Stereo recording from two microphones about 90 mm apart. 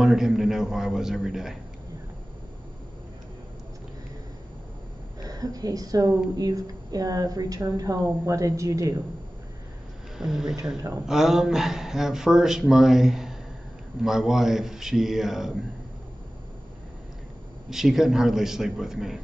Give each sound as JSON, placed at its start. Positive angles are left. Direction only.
{"t": 0.0, "sound": "speech", "side_deg": -5}
{"t": 5.2, "sound": "a woman's voice", "side_deg": -45}
{"t": 10.1, "sound": "speech", "side_deg": -5}
{"t": 17.6, "sound": "speech", "side_deg": -5}